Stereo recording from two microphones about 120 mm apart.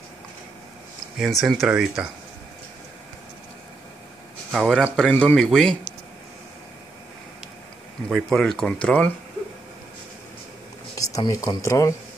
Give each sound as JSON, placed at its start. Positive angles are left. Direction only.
{"t": 1.2, "sound": "speech", "side_deg": 0}
{"t": 4.5, "sound": "speech", "side_deg": 0}
{"t": 8.1, "sound": "speech", "side_deg": 5}
{"t": 11.0, "sound": "speech", "side_deg": 30}